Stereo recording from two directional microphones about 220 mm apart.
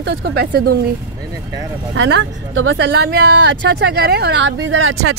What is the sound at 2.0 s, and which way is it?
Speech, 55° right (ahead or behind).